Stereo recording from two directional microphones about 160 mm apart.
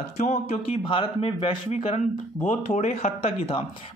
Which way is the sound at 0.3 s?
40° left (ahead or behind).